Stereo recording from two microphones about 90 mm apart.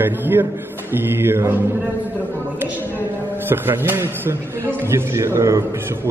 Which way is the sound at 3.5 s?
25° right (ahead or behind).